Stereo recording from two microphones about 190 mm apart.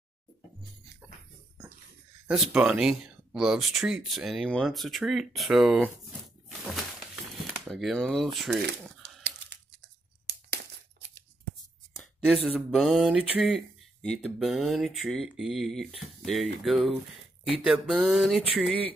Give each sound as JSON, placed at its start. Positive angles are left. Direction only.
{"t": 2.2, "sound": "speech", "side_deg": -5}
{"t": 9.0, "sound": "a sound", "side_deg": -65}
{"t": 10.2, "sound": "tearing", "side_deg": -60}
{"t": 12.4, "sound": "speech", "side_deg": 0}